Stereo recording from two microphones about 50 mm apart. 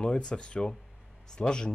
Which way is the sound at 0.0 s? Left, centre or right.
Centre.